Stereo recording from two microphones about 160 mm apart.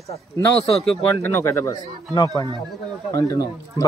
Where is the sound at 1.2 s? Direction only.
15° left (ahead or behind).